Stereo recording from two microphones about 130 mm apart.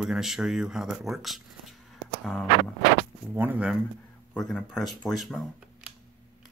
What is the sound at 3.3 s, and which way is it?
Speech, 15° right (ahead or behind).